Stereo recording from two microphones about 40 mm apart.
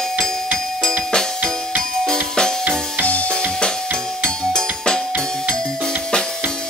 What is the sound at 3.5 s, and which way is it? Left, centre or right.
Music, centre.